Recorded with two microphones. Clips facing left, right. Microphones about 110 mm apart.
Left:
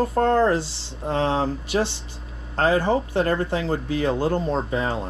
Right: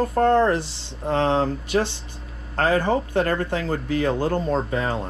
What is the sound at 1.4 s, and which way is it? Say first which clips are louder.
Speech: right 1 dB; 20° left (ahead or behind).